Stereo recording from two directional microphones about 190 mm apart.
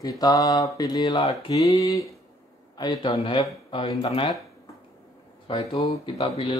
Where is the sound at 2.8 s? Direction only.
20° left (ahead or behind).